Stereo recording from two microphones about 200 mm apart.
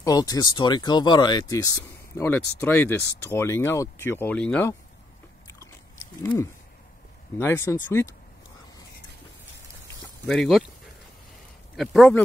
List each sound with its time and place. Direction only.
0.0 s speech: 20° left (ahead or behind)
7.3 s speech: 10° left (ahead or behind)
10.2 s speech: centre (ahead or behind)
11.7 s speech: centre (ahead or behind)